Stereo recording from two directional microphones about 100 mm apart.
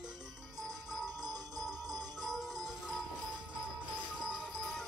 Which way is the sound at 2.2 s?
Centre (ahead or behind).